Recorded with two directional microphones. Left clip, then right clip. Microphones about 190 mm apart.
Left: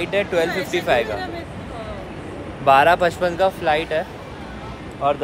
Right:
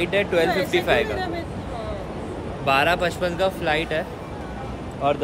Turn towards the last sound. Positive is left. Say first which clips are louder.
# left 2 dB
turn(degrees=-5)  # may be behind; listen again after turning